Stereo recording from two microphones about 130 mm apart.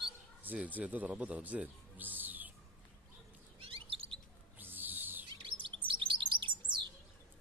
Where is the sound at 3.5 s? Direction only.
45° right (ahead or behind).